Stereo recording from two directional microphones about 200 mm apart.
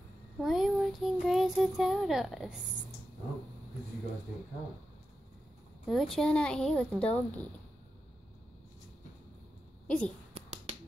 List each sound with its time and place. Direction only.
0.4 s a sound: centre (ahead or behind)
1.2 s a child's voice: centre (ahead or behind)
5.9 s a child's voice: centre (ahead or behind)
9.8 s a woman's voice: 5° left (ahead or behind)
10.3 s finger snapping: 30° right (ahead or behind)